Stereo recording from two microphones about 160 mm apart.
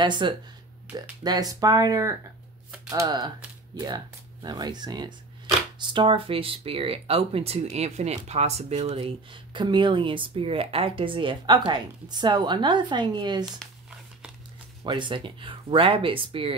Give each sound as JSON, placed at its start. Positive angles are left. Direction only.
{"t": 0.0, "sound": "speech", "side_deg": -30}
{"t": 14.8, "sound": "speech", "side_deg": -30}